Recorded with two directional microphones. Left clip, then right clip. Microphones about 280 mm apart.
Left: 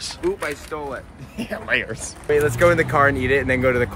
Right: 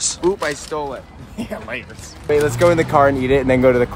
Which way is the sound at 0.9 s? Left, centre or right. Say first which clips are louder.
Right 1 dB; centre.